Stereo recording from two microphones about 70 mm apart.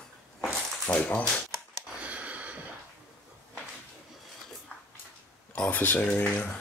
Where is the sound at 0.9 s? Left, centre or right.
Centre.